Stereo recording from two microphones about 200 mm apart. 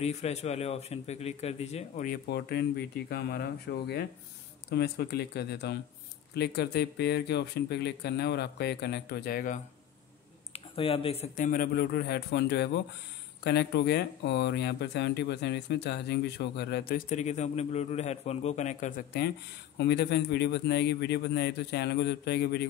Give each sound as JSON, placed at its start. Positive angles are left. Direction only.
{"t": 0.0, "sound": "a man's voice", "side_deg": 35}
{"t": 2.2, "sound": "speech", "side_deg": 55}
{"t": 10.5, "sound": "a man's voice", "side_deg": 30}
{"t": 17.1, "sound": "a man's voice", "side_deg": 35}
{"t": 19.8, "sound": "speech", "side_deg": 55}